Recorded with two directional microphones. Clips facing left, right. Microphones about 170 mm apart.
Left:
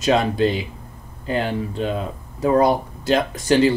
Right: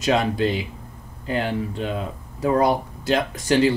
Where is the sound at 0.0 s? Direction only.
30° left (ahead or behind).